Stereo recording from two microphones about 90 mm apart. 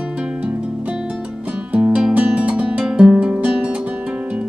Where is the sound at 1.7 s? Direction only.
10° right (ahead or behind).